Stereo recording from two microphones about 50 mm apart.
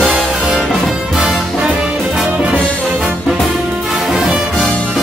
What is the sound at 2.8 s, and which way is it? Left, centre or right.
Music, right.